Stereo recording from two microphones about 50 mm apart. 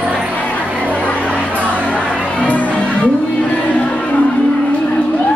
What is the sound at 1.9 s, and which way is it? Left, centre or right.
Music, left.